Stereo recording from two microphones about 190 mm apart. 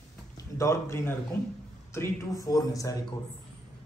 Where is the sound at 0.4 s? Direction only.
15° left (ahead or behind).